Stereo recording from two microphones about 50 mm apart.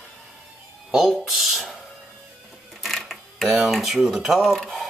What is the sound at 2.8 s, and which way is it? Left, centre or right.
Cash register, centre.